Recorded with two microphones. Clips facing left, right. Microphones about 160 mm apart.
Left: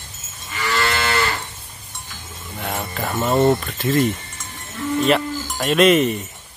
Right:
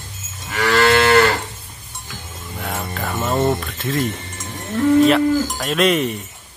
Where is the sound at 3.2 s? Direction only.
5° left (ahead or behind).